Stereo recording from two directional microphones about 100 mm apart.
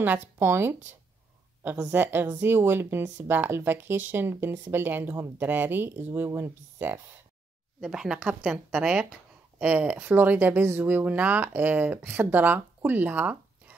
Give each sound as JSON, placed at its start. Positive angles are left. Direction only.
{"t": 0.0, "sound": "speech", "side_deg": -20}
{"t": 1.9, "sound": "speech", "side_deg": -20}
{"t": 7.8, "sound": "speech", "side_deg": -5}